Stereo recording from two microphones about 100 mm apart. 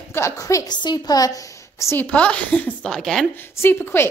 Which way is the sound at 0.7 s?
45° left (ahead or behind).